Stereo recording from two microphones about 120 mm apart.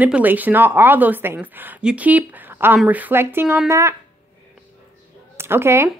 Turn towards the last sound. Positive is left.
turn(degrees=-20)  # may be behind; listen again after turning